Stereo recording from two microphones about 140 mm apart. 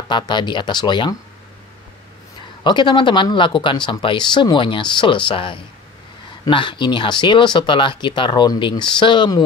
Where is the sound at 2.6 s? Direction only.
35° left (ahead or behind).